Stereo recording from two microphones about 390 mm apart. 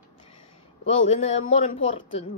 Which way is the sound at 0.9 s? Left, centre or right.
Centre.